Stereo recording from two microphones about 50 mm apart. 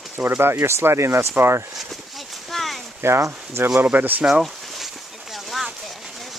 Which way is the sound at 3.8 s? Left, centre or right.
Right.